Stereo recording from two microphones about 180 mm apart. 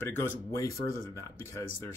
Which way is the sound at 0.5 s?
15° left (ahead or behind).